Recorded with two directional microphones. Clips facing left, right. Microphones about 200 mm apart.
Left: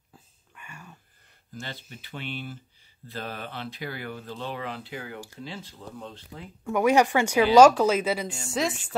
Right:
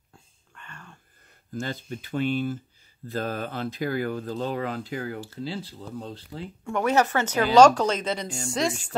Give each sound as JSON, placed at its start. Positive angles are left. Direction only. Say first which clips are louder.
{"t": 0.1, "sound": "a sound", "louder": "even", "side_deg": 10}
{"t": 1.5, "sound": "speech", "louder": "right 8 dB", "side_deg": -45}
{"t": 6.6, "sound": "a woman's voice", "louder": "left 2 dB", "side_deg": 10}